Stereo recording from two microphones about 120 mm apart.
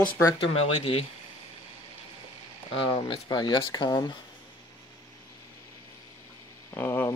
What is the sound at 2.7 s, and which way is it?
Speech, 45° left (ahead or behind).